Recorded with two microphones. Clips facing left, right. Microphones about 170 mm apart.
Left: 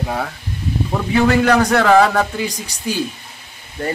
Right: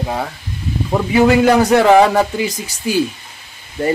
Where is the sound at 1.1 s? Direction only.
10° right (ahead or behind).